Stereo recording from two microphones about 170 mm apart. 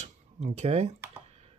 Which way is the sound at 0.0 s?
40° right (ahead or behind).